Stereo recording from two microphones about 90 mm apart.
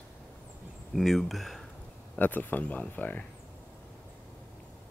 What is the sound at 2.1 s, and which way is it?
Speech, 20° left (ahead or behind).